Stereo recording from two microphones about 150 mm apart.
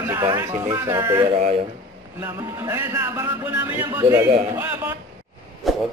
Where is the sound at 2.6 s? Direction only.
15° right (ahead or behind).